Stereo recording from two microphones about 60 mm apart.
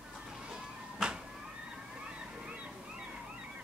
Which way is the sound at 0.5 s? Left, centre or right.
Centre.